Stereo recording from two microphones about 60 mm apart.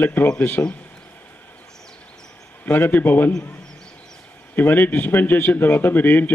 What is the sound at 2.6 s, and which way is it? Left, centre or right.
Speech, left.